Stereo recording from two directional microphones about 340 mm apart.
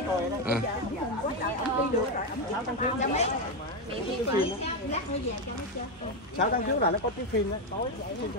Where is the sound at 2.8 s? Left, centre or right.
Centre.